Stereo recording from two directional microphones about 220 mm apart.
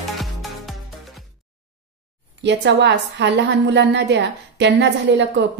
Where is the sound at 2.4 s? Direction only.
50° right (ahead or behind).